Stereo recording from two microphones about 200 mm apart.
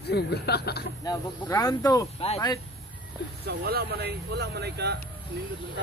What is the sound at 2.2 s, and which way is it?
Speech, 30° left (ahead or behind).